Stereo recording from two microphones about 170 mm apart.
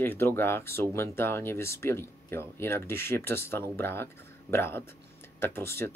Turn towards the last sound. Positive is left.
turn(degrees=15)  # may be behind; listen again after turning